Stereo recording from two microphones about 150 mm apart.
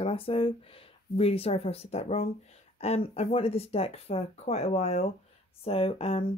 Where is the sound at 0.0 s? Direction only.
40° left (ahead or behind).